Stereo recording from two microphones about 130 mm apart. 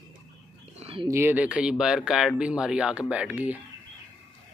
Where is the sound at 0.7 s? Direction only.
50° right (ahead or behind).